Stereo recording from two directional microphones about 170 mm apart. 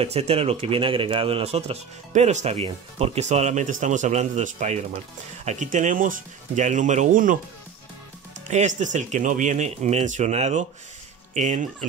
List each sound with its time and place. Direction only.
0.0 s speech: 35° right (ahead or behind)
8.5 s speech: 45° right (ahead or behind)